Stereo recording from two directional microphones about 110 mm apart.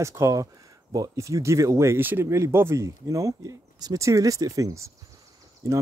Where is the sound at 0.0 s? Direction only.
25° right (ahead or behind).